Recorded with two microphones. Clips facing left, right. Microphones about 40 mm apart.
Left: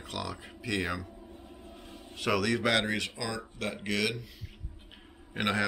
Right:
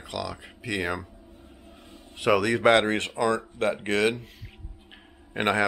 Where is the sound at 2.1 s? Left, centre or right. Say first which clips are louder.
Right 6 dB; right.